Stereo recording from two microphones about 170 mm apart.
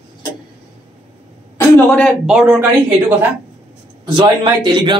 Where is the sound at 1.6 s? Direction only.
5° left (ahead or behind); by 3.3 s 10° right (ahead or behind).